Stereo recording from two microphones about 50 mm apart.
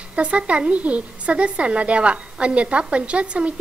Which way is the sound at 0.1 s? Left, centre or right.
Right.